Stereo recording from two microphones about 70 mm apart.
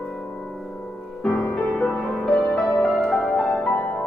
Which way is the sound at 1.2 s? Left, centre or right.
Centre.